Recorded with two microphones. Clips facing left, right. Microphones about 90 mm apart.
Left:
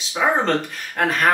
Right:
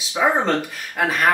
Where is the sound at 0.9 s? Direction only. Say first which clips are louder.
Even; 5° right (ahead or behind).